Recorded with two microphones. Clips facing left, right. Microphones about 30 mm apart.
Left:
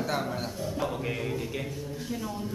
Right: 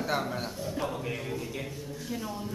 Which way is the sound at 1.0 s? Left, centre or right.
Centre.